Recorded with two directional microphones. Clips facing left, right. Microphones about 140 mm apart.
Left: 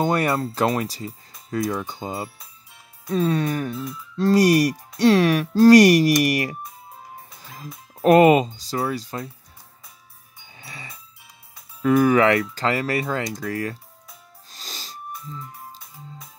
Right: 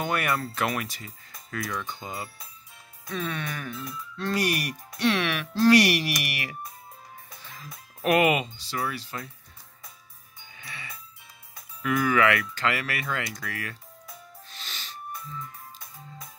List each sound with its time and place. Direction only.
0.0 s speech: 35° left (ahead or behind)
10.5 s music: 30° left (ahead or behind)
11.8 s speech: 35° left (ahead or behind)
14.6 s wheeze: 35° left (ahead or behind)